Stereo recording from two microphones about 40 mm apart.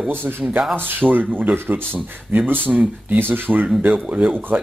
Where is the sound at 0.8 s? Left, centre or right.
Right.